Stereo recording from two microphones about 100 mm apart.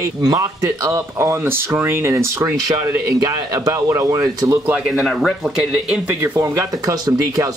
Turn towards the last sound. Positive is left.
turn(degrees=-35)  # may be behind; listen again after turning